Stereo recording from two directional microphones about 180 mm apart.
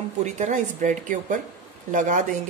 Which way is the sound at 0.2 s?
40° right (ahead or behind).